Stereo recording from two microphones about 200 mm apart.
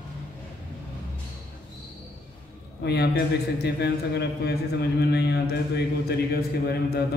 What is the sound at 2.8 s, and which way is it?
A man's voice, 55° left (ahead or behind).